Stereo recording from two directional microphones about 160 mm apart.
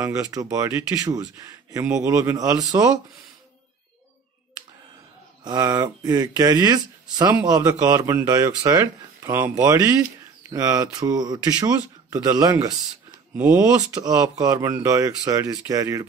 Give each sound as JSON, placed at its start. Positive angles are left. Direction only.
{"t": 0.0, "sound": "speech", "side_deg": -20}
{"t": 5.4, "sound": "speech", "side_deg": -25}
{"t": 13.4, "sound": "speech", "side_deg": -10}
{"t": 13.9, "sound": "speech", "side_deg": -25}